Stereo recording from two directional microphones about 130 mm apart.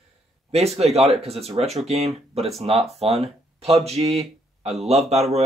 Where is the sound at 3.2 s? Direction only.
50° right (ahead or behind).